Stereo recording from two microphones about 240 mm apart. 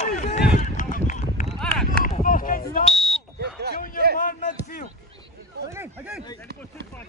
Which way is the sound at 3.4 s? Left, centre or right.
Right.